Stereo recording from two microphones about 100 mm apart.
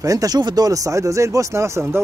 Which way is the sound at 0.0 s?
35° right (ahead or behind).